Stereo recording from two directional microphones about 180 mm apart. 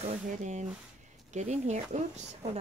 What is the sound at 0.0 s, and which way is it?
Speech, 40° right (ahead or behind).